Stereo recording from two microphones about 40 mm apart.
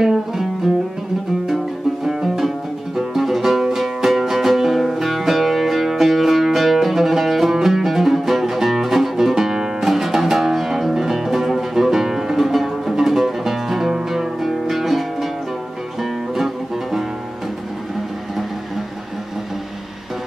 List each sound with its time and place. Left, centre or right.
0.0 s music: centre
2.0 s music: centre